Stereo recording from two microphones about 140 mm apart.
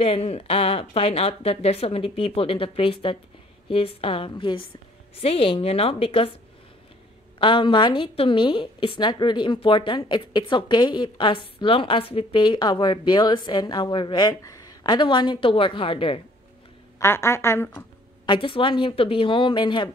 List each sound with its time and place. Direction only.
0.0 s a woman's voice: 45° left (ahead or behind)
7.3 s a woman's voice: 40° left (ahead or behind)
17.0 s a woman's voice: 20° left (ahead or behind)
18.2 s a woman's voice: 35° left (ahead or behind)